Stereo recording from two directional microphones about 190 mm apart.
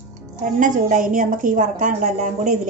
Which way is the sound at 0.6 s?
45° right (ahead or behind).